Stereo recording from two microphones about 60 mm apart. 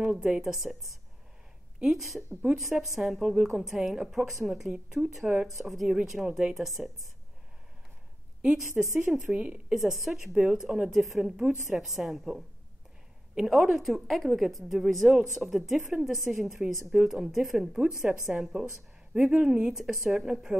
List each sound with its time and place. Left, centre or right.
0.4 s a woman's voice: centre
8.4 s speech: centre
9.8 s a woman's voice: centre
10.3 s speech: centre
10.9 s a woman's voice: centre
17.7 s speech: centre